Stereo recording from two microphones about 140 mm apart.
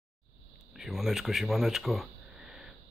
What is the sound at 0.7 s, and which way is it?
Speech, centre (ahead or behind).